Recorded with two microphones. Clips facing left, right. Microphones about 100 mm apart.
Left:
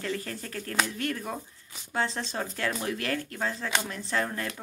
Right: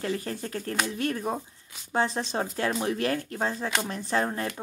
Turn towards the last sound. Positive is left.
turn(degrees=-25)  # may be behind; listen again after turning